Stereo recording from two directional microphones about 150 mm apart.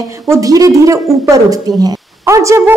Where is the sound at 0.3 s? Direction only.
20° right (ahead or behind).